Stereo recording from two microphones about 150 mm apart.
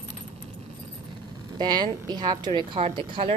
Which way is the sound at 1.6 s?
30° right (ahead or behind).